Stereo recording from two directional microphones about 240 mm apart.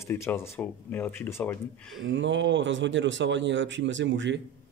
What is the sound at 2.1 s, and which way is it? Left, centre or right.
Speech, right.